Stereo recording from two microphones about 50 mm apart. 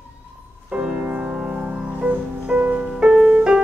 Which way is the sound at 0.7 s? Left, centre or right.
Right.